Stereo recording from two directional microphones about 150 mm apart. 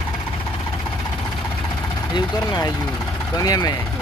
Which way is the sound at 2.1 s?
30° left (ahead or behind).